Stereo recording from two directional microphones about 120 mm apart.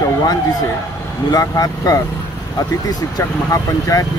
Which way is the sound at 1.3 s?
30° left (ahead or behind).